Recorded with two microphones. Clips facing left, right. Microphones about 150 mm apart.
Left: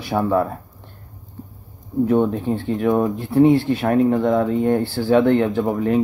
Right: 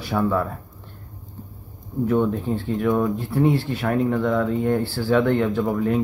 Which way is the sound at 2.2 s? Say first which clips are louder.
Left 2 dB; 20° left (ahead or behind).